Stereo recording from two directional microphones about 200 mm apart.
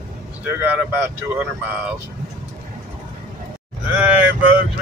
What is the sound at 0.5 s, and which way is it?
Speech, 10° right (ahead or behind).